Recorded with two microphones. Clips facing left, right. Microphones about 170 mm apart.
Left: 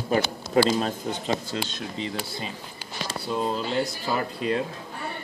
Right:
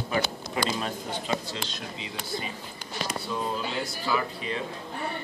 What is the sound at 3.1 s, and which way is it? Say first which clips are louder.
Speech: left 4 dB; 30° left (ahead or behind).